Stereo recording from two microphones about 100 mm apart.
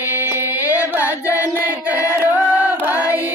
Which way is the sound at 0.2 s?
20° right (ahead or behind).